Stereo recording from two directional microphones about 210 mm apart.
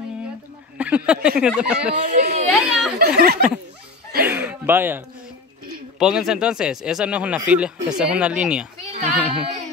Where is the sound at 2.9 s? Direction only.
45° right (ahead or behind).